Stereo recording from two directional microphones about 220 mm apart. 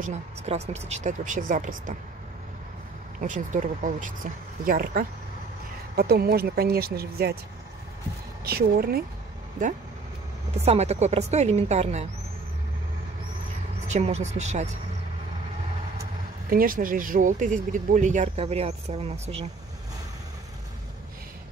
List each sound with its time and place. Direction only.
0.0 s speech: 30° right (ahead or behind)
3.2 s speech: 35° right (ahead or behind)
8.5 s speech: 45° right (ahead or behind)
10.5 s speech: 30° right (ahead or behind)
13.8 s speech: 30° right (ahead or behind)
16.4 s speech: 40° right (ahead or behind)